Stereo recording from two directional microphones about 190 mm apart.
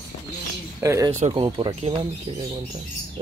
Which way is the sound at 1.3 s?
30° right (ahead or behind).